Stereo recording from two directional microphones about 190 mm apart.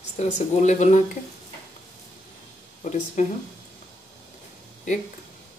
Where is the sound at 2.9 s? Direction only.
40° left (ahead or behind).